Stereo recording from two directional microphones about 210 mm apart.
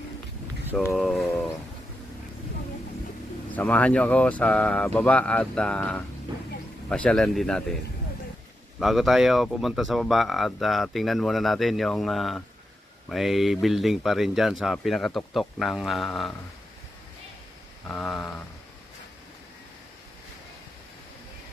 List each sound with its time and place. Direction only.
0.9 s a sound: centre (ahead or behind)
3.5 s speech: 5° left (ahead or behind)
8.7 s speech: centre (ahead or behind)
17.8 s speech: 5° left (ahead or behind)